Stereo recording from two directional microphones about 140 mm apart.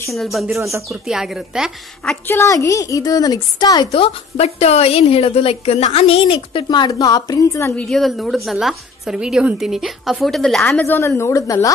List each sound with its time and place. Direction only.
0.1 s a woman's voice: centre (ahead or behind)
0.6 s speech: 20° right (ahead or behind)
0.8 s a woman's voice: 5° right (ahead or behind)
2.2 s a woman's voice: 20° left (ahead or behind)
3.9 s a woman's voice: 45° left (ahead or behind); by 7.8 s 20° left (ahead or behind)
7.8 s a woman's voice: centre (ahead or behind)
10.8 s a woman's voice: 15° left (ahead or behind)